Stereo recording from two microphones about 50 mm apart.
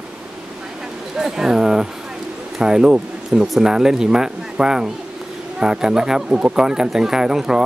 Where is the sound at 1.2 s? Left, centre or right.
Centre.